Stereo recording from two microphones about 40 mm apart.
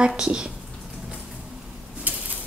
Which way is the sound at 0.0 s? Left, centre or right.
Right.